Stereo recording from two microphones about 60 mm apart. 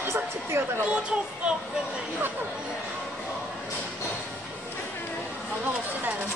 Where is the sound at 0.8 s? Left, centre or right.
Centre.